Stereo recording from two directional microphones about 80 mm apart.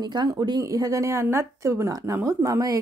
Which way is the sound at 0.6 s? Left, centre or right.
Right.